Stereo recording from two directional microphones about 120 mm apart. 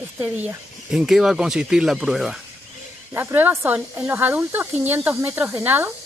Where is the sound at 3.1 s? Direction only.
20° right (ahead or behind).